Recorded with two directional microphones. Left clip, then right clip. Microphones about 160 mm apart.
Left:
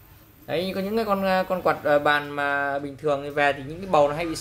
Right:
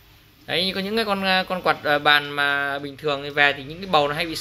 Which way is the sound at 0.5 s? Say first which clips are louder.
Right 3 dB; centre (ahead or behind).